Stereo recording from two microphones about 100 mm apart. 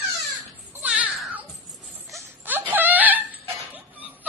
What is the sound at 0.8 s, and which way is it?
Music, 10° right (ahead or behind).